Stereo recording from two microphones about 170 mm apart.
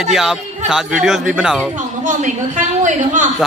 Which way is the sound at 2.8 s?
45° right (ahead or behind).